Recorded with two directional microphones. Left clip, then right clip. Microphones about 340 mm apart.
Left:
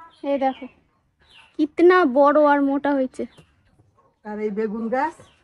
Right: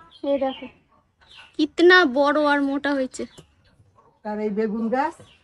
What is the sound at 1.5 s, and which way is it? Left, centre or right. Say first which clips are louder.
Speech: right 1 dB; centre.